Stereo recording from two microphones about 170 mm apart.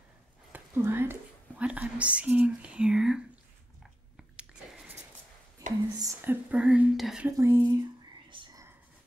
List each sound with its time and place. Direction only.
0.5 s a sound: 15° right (ahead or behind)
1.6 s speech: 10° right (ahead or behind)
4.2 s biting: 5° right (ahead or behind)
5.9 s speech: 20° right (ahead or behind)
6.5 s speech: 5° right (ahead or behind)
7.2 s speech: 15° right (ahead or behind)
8.3 s whispering: 30° right (ahead or behind)